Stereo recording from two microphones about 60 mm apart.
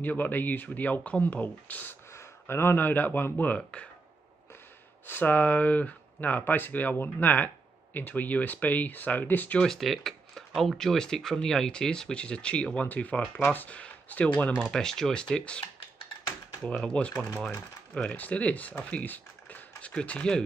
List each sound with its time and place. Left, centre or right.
0.0 s speech: left
2.1 s speech: left
5.0 s speech: left
9.6 s speech: centre; by 14.5 s left
14.7 s speech: centre
16.6 s speech: centre
19.0 s typing: left